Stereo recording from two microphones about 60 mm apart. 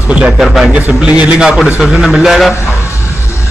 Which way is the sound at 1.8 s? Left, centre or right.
Centre.